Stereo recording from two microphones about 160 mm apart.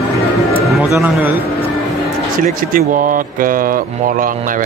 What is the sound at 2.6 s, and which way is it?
Speech, 60° right (ahead or behind).